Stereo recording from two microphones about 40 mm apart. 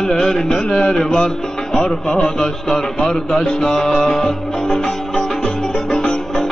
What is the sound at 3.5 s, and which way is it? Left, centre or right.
Music, centre.